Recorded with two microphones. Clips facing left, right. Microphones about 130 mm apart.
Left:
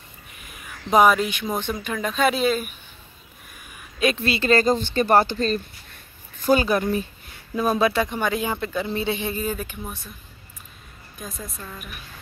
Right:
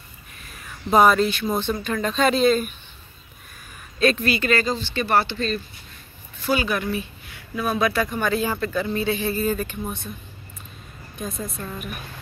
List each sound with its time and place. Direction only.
0.4 s a sound: 15° left (ahead or behind)
0.9 s speech: 10° left (ahead or behind)
4.2 s speech: 30° left (ahead or behind); by 9.9 s 10° left (ahead or behind)
11.1 s a woman's voice: centre (ahead or behind)